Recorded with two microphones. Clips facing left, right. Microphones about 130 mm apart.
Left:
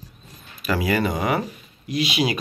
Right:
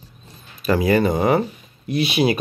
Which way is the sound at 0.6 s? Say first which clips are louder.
Right 5 dB; 40° right (ahead or behind).